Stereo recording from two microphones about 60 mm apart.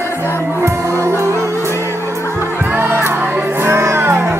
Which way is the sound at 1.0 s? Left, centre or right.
Right.